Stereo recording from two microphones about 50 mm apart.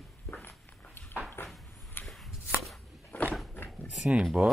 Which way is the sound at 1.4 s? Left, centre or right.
Left.